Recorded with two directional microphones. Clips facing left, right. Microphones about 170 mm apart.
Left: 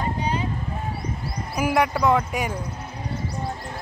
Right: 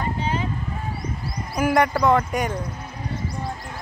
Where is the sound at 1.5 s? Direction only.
5° left (ahead or behind).